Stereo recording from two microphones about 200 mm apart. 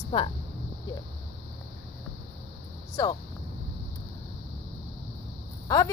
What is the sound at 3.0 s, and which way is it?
Speech, 20° left (ahead or behind).